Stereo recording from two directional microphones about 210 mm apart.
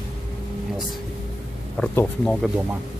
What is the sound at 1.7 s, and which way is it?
Speech, 5° left (ahead or behind).